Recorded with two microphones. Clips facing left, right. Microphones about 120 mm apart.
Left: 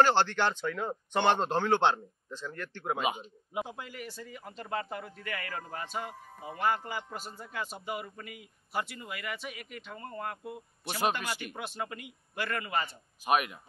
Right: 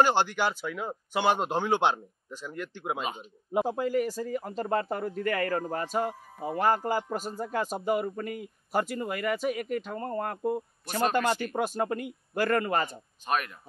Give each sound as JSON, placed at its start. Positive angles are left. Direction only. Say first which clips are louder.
{"t": 0.0, "sound": "speech", "louder": "right 1 dB", "side_deg": -15}
{"t": 3.0, "sound": "speech", "louder": "left 2 dB", "side_deg": 10}
{"t": 3.5, "sound": "speech", "louder": "right 12 dB", "side_deg": -45}
{"t": 13.2, "sound": "speech", "louder": "left 2 dB", "side_deg": 10}